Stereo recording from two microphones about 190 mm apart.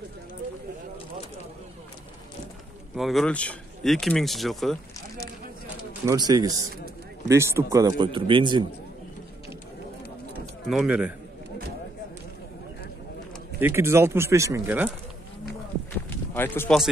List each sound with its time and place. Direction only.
3.0 s speech: centre (ahead or behind)
6.0 s speech: 20° right (ahead or behind)
10.7 s speech: 5° right (ahead or behind)
13.6 s speech: 10° right (ahead or behind)
16.3 s speech: 10° left (ahead or behind)